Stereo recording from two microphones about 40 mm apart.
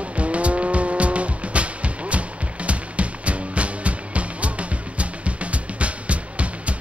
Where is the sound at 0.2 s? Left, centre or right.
Right.